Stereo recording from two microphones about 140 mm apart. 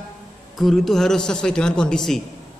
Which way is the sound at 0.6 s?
Centre (ahead or behind).